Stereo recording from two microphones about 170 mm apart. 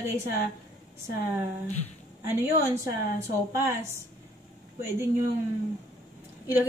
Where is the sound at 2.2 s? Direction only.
15° right (ahead or behind).